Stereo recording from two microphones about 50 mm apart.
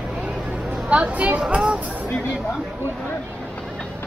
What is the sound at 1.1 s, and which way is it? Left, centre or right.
Speech, right.